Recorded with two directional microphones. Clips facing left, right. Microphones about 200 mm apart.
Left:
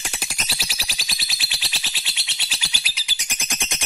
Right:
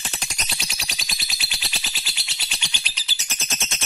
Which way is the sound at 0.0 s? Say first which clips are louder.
Left 1 dB; 10° left (ahead or behind).